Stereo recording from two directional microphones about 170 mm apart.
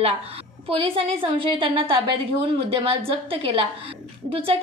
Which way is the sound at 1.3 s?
30° right (ahead or behind).